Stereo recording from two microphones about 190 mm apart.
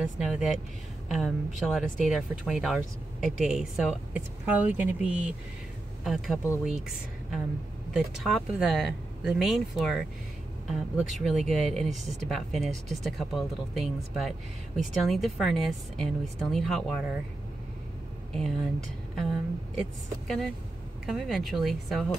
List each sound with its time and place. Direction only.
0.0 s speech: centre (ahead or behind)
12.0 s speech: 35° right (ahead or behind)
12.3 s speech: centre (ahead or behind)
18.3 s speech: centre (ahead or behind)
21.0 s speech: centre (ahead or behind)